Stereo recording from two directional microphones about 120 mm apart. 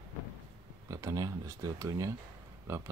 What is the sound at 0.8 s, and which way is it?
Speech, 30° right (ahead or behind).